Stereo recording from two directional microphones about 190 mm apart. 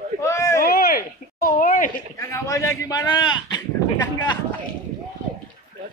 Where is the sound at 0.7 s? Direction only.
50° left (ahead or behind).